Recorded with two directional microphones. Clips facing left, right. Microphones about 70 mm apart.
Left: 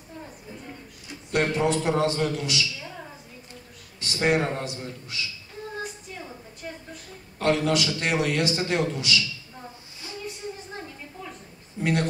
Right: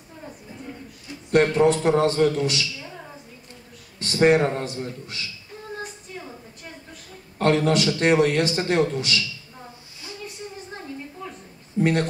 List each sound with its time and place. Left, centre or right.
1.3 s a man's voice: right
2.8 s a sound: centre
4.0 s a man's voice: right
7.3 s a man's voice: right
11.8 s a man's voice: right